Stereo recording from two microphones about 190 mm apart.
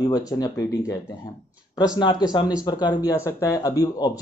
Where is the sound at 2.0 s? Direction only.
20° left (ahead or behind).